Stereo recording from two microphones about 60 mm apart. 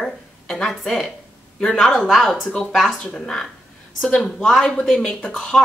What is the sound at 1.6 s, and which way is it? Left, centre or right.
Speech, centre.